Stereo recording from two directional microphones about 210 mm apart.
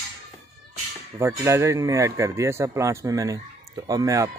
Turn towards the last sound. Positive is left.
turn(degrees=-15)  # may be behind; listen again after turning